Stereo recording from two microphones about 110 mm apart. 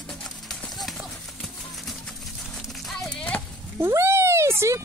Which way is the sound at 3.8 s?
20° right (ahead or behind).